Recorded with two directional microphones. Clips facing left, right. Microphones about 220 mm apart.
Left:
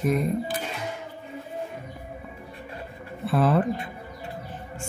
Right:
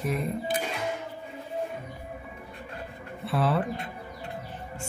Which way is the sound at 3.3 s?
45° left (ahead or behind).